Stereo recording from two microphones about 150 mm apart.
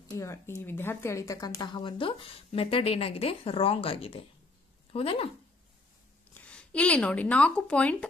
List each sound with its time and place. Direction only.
0.1 s speech: 20° left (ahead or behind); by 5.3 s 40° left (ahead or behind)
6.4 s speech: 10° left (ahead or behind)